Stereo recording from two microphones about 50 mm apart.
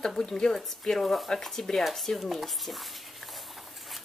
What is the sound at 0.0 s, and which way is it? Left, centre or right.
Speech, centre.